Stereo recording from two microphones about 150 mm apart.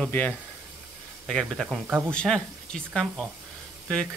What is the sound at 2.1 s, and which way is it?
Speech, 5° left (ahead or behind).